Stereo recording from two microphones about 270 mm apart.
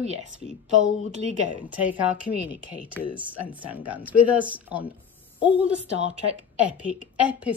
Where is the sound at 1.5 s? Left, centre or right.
Centre.